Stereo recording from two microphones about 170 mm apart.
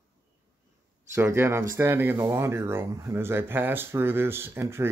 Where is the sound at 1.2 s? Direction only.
15° right (ahead or behind).